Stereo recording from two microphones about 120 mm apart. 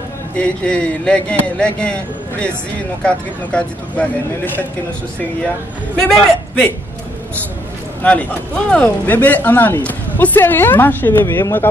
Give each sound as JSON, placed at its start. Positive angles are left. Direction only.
{"t": 0.4, "sound": "a woman's voice", "side_deg": 10}
{"t": 3.0, "sound": "a woman's voice", "side_deg": 10}
{"t": 5.9, "sound": "a man's voice", "side_deg": 5}
{"t": 8.0, "sound": "a woman's voice", "side_deg": 10}